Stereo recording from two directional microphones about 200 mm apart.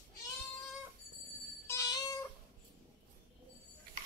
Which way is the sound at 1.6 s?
15° left (ahead or behind).